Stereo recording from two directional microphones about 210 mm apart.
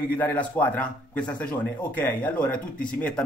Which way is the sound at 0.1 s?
10° left (ahead or behind).